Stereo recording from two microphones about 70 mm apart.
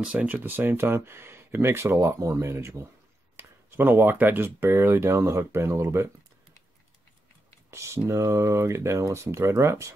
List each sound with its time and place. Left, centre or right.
0.0 s speech: centre
0.4 s speech: right
7.7 s speech: right